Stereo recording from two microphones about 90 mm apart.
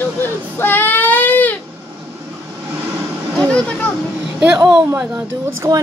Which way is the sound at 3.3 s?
10° left (ahead or behind).